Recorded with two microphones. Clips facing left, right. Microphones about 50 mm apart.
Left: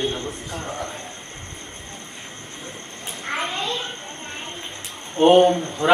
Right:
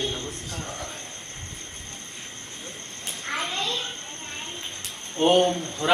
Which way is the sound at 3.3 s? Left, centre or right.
Centre.